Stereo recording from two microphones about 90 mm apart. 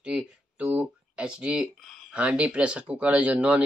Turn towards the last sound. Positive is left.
turn(degrees=-15)  # may be behind; listen again after turning